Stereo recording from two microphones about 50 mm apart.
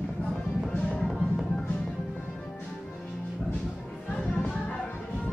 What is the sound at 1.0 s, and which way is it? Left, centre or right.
Music, centre.